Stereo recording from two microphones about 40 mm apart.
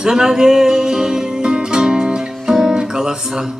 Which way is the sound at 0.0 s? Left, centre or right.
Centre.